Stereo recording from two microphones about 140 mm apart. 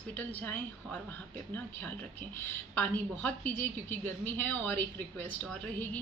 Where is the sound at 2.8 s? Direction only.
10° left (ahead or behind).